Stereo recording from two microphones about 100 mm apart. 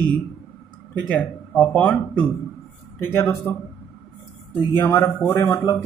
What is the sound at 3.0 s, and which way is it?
Speech, 25° left (ahead or behind).